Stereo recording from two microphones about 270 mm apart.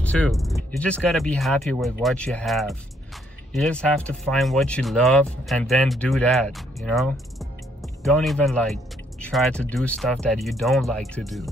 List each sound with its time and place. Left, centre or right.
0.0 s speech: centre